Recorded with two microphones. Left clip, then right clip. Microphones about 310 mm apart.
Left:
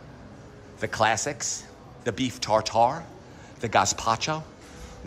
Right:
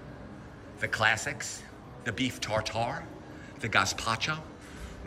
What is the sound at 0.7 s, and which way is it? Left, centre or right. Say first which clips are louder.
Speech: left 3 dB; centre.